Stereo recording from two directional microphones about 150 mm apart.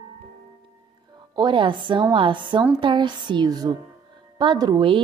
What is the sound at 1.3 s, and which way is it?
A woman's voice, 30° right (ahead or behind).